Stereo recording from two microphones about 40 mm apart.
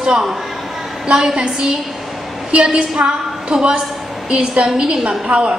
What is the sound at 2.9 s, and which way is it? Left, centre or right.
A woman's voice, right.